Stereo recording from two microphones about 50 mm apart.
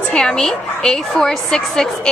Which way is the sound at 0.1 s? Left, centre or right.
Centre.